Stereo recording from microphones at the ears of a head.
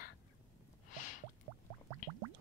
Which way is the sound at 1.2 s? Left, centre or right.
Right.